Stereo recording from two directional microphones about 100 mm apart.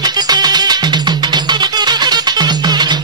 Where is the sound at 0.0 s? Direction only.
45° right (ahead or behind).